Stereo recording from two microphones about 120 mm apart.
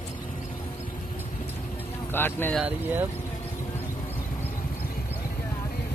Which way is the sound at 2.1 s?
20° left (ahead or behind).